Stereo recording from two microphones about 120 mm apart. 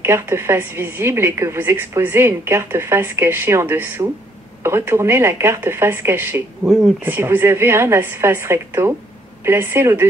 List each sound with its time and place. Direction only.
0.0 s a woman's voice: 20° right (ahead or behind)